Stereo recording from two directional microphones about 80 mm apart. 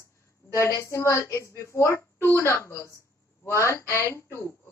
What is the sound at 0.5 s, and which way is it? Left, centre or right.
A woman's voice, left.